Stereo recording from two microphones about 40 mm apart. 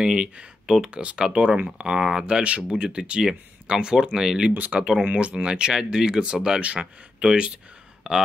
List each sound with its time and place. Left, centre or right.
0.0 s speech: right
2.4 s speech: right
5.0 s speech: right